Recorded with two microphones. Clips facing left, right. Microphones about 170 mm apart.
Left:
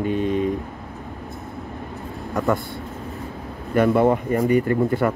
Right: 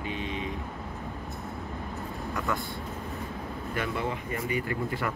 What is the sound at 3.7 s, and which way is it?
Speech, 50° left (ahead or behind).